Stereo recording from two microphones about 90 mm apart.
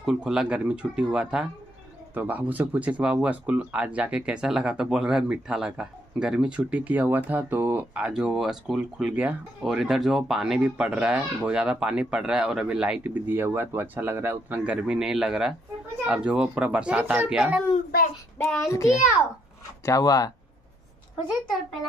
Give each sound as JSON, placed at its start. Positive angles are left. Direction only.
{"t": 0.0, "sound": "speech", "side_deg": -5}
{"t": 8.0, "sound": "speech", "side_deg": -10}
{"t": 13.0, "sound": "speech", "side_deg": -20}
{"t": 14.6, "sound": "speech", "side_deg": -10}
{"t": 18.7, "sound": "a child's voice", "side_deg": 35}